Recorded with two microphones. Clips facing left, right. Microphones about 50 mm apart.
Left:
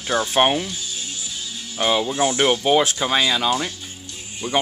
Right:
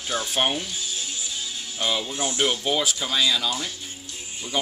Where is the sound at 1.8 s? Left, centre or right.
Left.